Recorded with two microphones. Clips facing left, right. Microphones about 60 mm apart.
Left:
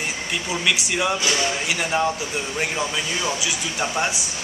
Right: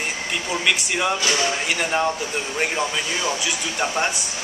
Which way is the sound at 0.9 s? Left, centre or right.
Centre.